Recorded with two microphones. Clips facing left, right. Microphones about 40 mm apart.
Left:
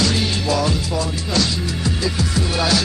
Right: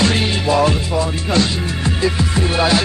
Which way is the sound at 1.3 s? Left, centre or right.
Right.